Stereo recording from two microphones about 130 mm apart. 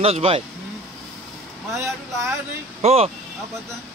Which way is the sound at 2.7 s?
50° right (ahead or behind).